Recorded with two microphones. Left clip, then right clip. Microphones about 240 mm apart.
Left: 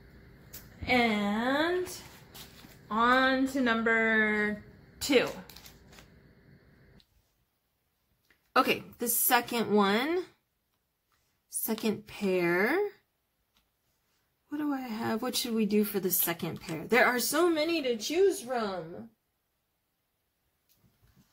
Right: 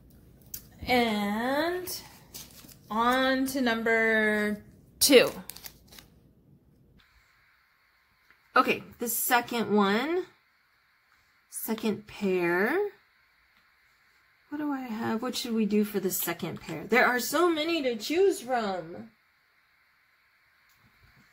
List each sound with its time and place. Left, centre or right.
0.8 s speech: right
2.9 s speech: right
8.5 s a woman's voice: centre
11.6 s a woman's voice: centre
14.5 s a woman's voice: centre